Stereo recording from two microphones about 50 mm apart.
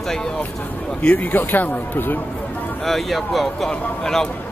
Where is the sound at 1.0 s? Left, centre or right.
Left.